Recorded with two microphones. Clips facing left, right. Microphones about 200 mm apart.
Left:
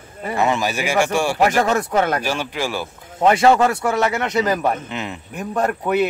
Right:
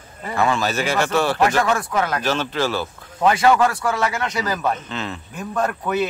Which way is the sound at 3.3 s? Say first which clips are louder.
Left 2 dB; 25° left (ahead or behind).